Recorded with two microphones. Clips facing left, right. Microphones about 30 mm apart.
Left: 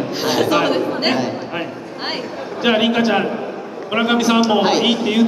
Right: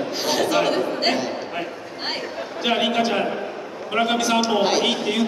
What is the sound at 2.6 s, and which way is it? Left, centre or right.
A man's voice, centre.